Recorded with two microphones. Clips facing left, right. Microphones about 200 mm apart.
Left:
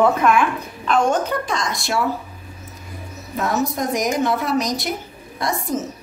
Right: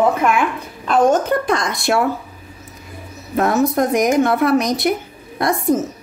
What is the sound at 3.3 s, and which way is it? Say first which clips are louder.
A woman's voice: right 6 dB; 55° right (ahead or behind).